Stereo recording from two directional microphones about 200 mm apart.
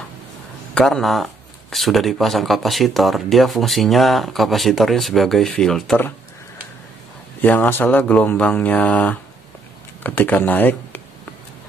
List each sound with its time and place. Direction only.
0.7 s speech: 5° left (ahead or behind)
7.4 s speech: 10° left (ahead or behind)